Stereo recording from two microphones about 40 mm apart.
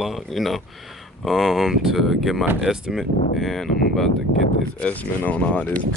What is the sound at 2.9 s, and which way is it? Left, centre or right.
Speech, centre.